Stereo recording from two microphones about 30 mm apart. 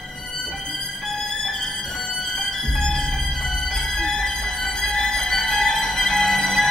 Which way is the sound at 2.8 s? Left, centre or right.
Centre.